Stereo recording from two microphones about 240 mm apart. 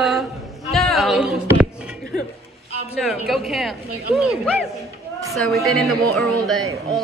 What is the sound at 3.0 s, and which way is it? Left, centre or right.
Speech, centre.